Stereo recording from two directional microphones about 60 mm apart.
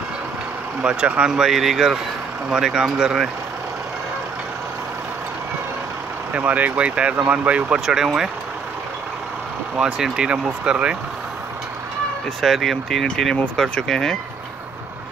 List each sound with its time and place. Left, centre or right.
0.8 s speech: centre
6.3 s speech: right
7.8 s speech: centre
9.8 s speech: centre
12.4 s speech: centre